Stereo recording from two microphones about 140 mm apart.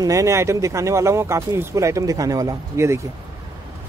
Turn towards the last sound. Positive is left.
turn(degrees=-20)  # may be behind; listen again after turning